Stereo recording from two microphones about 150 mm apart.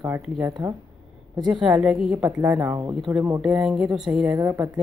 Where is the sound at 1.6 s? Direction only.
5° right (ahead or behind).